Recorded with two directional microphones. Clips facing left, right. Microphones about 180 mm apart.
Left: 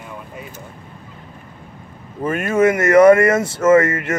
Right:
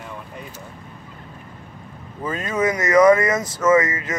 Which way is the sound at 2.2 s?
25° left (ahead or behind).